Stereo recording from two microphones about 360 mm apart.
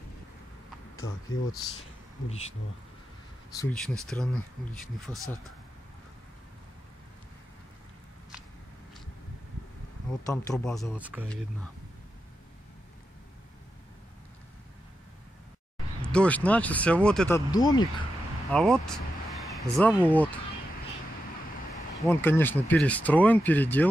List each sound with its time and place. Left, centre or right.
1.3 s speech: left
3.5 s speech: centre
10.2 s speech: centre
16.0 s speech: centre
22.0 s speech: centre